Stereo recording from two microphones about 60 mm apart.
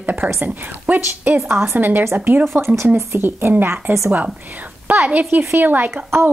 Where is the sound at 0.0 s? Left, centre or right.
Right.